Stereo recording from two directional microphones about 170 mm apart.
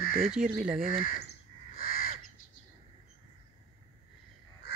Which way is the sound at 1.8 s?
55° left (ahead or behind).